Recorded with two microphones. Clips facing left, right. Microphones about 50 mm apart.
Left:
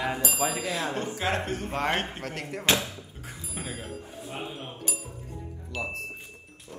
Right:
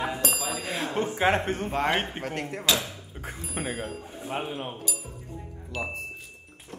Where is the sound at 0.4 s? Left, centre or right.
Left.